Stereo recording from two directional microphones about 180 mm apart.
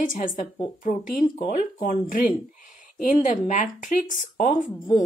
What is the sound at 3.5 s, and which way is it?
A woman's voice, 45° left (ahead or behind).